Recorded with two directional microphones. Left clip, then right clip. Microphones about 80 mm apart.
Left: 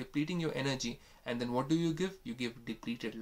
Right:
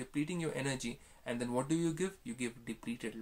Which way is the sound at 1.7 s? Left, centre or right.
Centre.